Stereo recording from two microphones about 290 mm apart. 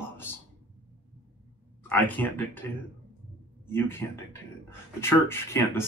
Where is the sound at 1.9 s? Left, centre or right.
Centre.